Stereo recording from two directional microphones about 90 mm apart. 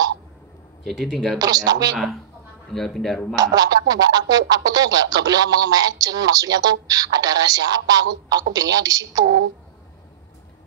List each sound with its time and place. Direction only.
0.8 s speech: centre (ahead or behind)
1.4 s speech: 45° right (ahead or behind)
2.7 s speech: 5° left (ahead or behind)
3.3 s speech: 45° right (ahead or behind)